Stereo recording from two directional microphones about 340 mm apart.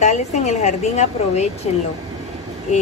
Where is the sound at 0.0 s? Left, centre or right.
Centre.